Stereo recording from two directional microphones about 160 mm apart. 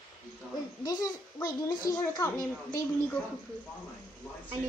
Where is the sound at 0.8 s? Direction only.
25° left (ahead or behind).